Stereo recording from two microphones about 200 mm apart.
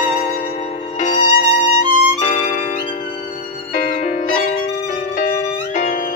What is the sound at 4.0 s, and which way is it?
Music, 35° left (ahead or behind).